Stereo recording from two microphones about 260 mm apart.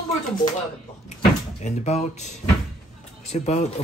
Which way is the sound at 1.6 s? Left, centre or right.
Left.